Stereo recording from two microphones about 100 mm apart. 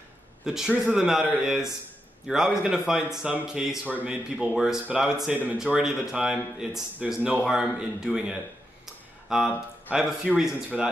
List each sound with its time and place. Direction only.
0.5 s speech: 5° right (ahead or behind)
7.2 s speech: 15° right (ahead or behind)
7.4 s speech: 5° right (ahead or behind)